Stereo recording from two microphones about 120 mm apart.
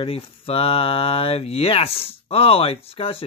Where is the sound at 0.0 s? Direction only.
50° left (ahead or behind).